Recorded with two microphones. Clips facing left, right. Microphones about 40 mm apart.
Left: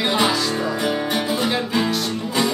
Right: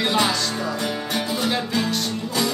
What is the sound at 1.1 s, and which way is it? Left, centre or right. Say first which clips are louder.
Music: left 2 dB; centre.